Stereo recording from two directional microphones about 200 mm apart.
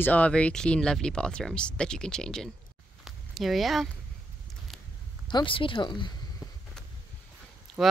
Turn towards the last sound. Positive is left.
turn(degrees=-5)  # may be behind; listen again after turning